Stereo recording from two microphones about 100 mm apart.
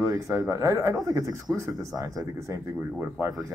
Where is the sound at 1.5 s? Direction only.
15° right (ahead or behind).